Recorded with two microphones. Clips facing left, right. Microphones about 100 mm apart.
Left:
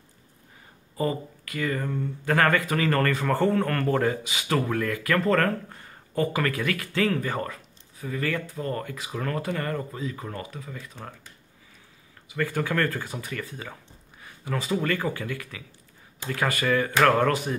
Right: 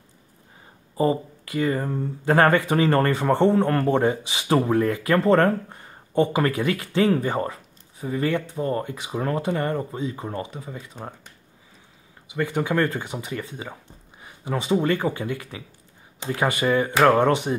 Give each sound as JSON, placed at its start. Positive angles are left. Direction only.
{"t": 0.9, "sound": "speech", "side_deg": -25}
{"t": 12.3, "sound": "speech", "side_deg": -20}